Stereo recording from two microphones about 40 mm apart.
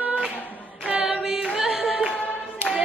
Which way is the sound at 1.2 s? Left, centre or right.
Centre.